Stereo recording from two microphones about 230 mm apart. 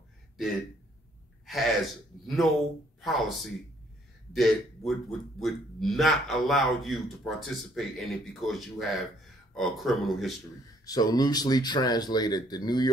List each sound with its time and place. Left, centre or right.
1.4 s a man's voice: centre
10.9 s speech: centre